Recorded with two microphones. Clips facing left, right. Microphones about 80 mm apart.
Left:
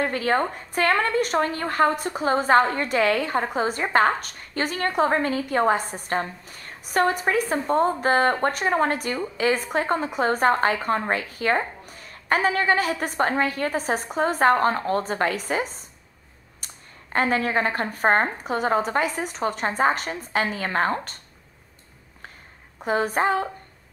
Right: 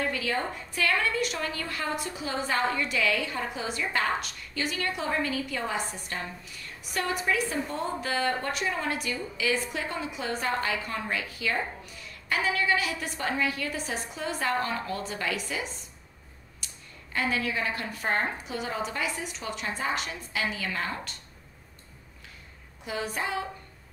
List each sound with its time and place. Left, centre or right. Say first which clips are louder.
0.0 s a woman's voice: left 7 dB; left
22.8 s a woman's voice: left 10 dB; left